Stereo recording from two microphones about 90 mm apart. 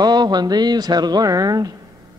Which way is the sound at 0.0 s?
50° right (ahead or behind).